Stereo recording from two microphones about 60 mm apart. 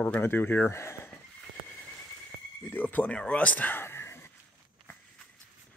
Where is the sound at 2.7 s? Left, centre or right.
Left.